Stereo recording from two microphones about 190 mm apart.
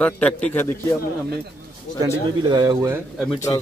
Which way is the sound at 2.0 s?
20° right (ahead or behind).